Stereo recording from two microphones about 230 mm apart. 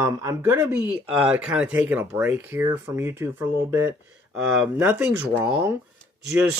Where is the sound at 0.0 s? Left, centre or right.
Centre.